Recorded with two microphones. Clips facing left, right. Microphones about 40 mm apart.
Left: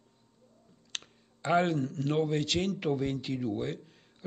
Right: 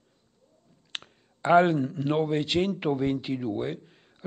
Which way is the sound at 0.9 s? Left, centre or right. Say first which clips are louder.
Right 3 dB; centre.